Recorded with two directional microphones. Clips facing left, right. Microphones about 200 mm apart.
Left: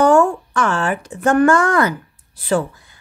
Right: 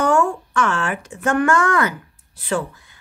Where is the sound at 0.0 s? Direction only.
35° left (ahead or behind).